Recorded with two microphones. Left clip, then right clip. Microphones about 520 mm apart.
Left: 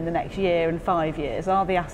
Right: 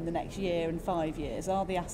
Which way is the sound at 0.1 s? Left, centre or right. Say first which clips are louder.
Left 10 dB; left.